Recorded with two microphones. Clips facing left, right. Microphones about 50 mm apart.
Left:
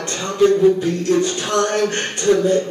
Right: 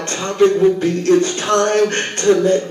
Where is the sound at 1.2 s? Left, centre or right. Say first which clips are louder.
Right 3 dB; right.